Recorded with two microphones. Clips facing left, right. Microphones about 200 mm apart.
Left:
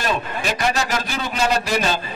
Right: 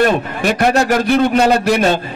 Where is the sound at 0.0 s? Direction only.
60° right (ahead or behind).